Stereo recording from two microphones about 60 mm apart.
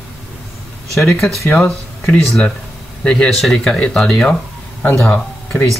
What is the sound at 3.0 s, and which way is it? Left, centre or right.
Speech, centre.